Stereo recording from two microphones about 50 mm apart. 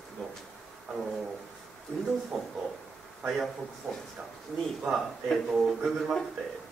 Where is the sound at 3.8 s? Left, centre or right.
Right.